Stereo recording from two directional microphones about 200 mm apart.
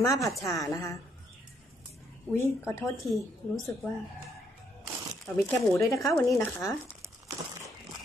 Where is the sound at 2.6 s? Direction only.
15° left (ahead or behind).